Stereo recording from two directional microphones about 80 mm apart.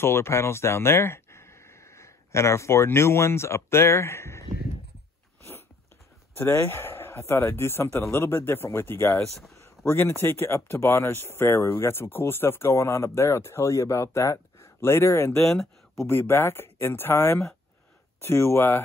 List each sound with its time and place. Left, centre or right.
0.0 s speech: left
6.3 s speech: left
15.4 s speech: centre
16.1 s speech: left